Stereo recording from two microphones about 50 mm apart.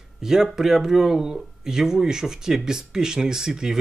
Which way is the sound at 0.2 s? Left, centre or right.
Centre.